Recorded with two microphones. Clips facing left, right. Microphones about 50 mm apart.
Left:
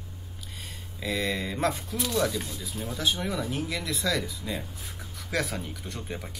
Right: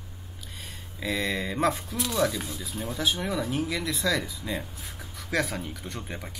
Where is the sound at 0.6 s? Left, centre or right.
Centre.